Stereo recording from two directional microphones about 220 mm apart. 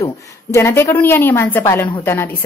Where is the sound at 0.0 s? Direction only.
15° left (ahead or behind).